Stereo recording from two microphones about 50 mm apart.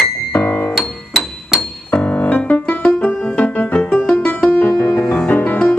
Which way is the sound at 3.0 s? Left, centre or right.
Left.